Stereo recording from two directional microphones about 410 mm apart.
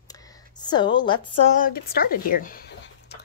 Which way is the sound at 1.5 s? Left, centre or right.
Left.